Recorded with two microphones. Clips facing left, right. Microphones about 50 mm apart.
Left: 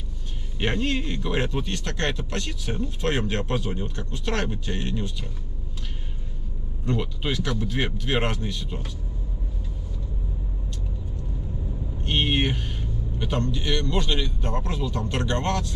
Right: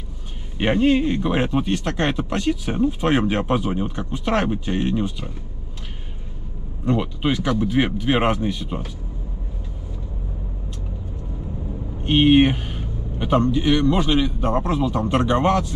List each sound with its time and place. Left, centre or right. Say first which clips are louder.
0.6 s speech: right 8 dB; centre
6.9 s speech: right 6 dB; centre
12.0 s speech: right 10 dB; centre